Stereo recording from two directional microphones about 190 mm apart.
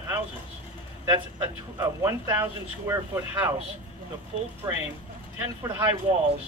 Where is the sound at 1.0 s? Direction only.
10° right (ahead or behind).